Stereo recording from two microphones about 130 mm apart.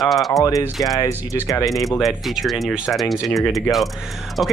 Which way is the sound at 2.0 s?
Centre (ahead or behind).